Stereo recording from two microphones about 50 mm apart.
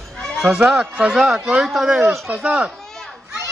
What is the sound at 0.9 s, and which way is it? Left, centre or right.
Speech, right.